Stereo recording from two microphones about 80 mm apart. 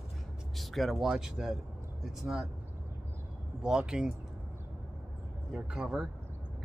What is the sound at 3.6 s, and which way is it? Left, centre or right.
Speech, centre.